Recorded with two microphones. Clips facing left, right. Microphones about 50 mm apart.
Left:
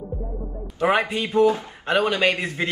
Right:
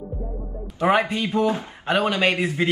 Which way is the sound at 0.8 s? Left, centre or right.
Centre.